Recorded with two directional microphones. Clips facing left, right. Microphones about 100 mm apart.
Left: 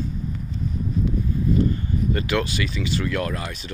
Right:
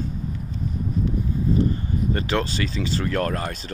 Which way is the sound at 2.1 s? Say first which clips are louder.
Even; 30° right (ahead or behind).